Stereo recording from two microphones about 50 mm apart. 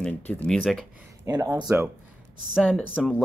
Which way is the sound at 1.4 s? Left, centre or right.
Right.